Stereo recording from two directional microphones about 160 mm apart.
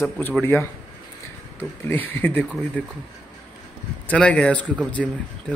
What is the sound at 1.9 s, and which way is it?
Speech, 15° left (ahead or behind).